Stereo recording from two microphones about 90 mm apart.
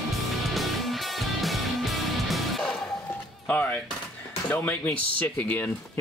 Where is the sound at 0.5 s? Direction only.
Centre (ahead or behind).